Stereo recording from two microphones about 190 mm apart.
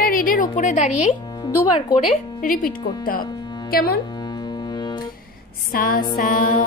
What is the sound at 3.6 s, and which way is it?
Speech, 55° left (ahead or behind).